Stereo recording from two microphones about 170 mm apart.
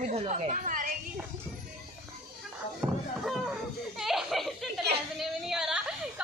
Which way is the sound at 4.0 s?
Centre (ahead or behind).